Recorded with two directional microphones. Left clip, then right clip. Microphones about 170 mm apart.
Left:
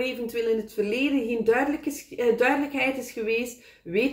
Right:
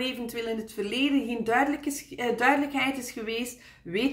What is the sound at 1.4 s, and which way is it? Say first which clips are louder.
A woman's voice: left 2 dB; 25° right (ahead or behind).